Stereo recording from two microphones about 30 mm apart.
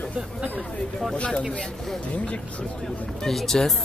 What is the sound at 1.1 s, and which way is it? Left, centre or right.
Speech, left.